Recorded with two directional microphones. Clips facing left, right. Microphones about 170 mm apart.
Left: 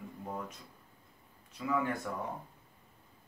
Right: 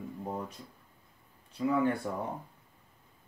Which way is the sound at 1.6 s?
30° right (ahead or behind).